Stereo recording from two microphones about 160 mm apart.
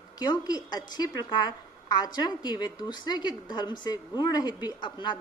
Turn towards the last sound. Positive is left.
turn(degrees=25)  # may be behind; listen again after turning